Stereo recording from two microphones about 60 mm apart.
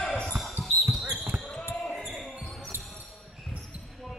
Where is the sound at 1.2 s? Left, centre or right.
Right.